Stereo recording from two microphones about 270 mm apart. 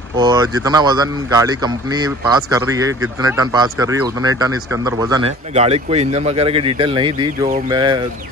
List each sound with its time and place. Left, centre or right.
0.2 s speech: centre